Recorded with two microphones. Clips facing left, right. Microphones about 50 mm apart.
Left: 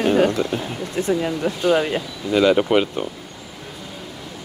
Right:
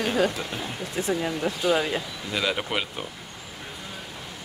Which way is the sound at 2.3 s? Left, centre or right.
Centre.